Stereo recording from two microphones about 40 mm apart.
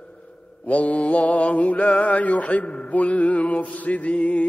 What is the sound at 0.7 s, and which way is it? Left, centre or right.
Mantra, left.